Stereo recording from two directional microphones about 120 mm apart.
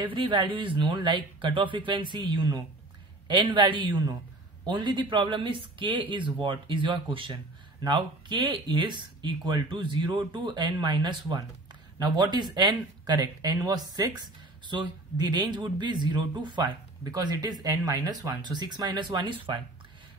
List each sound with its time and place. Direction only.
0.0 s speech: 45° right (ahead or behind)